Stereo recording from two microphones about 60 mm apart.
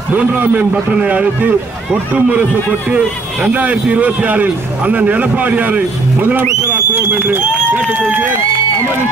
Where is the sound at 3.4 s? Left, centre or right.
Right.